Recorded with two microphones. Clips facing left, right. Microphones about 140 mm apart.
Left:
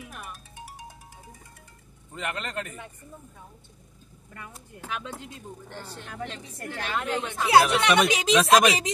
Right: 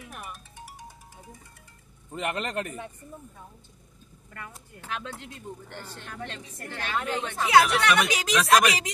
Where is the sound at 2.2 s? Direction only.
25° right (ahead or behind).